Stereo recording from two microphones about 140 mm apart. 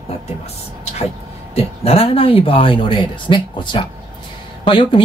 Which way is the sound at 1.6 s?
45° left (ahead or behind).